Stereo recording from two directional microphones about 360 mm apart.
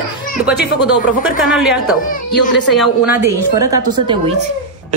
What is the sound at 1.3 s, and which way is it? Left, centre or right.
A woman's voice, centre.